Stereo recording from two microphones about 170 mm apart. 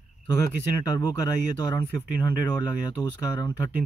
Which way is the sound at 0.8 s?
25° left (ahead or behind).